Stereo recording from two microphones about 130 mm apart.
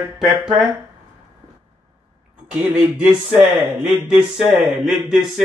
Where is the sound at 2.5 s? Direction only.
10° right (ahead or behind).